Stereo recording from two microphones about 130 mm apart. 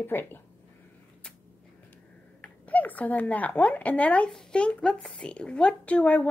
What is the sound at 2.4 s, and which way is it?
Speech, 10° left (ahead or behind).